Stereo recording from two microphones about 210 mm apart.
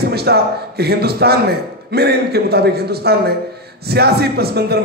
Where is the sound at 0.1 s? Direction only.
50° right (ahead or behind).